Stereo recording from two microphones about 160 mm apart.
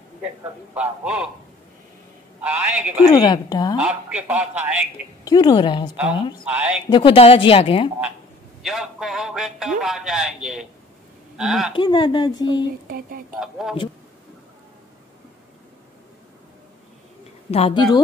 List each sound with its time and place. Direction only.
0.2 s speech: 10° right (ahead or behind)
2.6 s speech: 10° right (ahead or behind)
3.1 s speech: 25° left (ahead or behind)
3.7 s speech: 5° right (ahead or behind)
5.2 s speech: 25° left (ahead or behind)
6.4 s speech: 10° right (ahead or behind)
6.9 s a woman's voice: 30° left (ahead or behind)
8.6 s speech: centre (ahead or behind)
11.7 s speech: 30° left (ahead or behind)
12.8 s speech: 65° right (ahead or behind)
13.4 s speech: centre (ahead or behind)
17.5 s a woman's voice: 35° left (ahead or behind)